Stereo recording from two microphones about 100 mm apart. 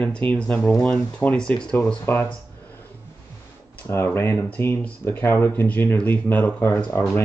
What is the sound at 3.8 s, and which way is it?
Speech, 20° left (ahead or behind).